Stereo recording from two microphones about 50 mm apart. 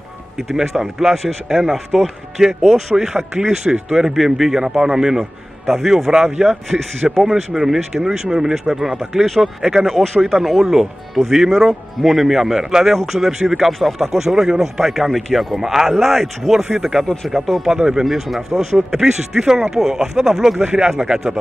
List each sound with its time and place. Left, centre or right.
0.4 s speech: centre
1.1 s speech: centre
9.6 s speech: centre
9.8 s speech: centre
18.0 s speech: centre